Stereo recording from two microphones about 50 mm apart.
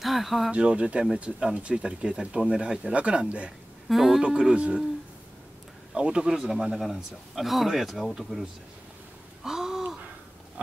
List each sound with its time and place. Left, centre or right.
0.0 s a man's voice: centre
0.5 s speech: right
3.9 s a man's voice: centre
5.9 s a man's voice: centre
9.4 s a sound: centre